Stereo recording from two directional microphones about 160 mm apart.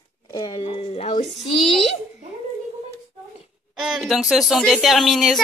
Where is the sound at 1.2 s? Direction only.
Centre (ahead or behind).